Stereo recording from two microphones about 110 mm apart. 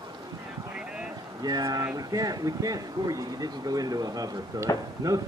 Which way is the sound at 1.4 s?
35° right (ahead or behind).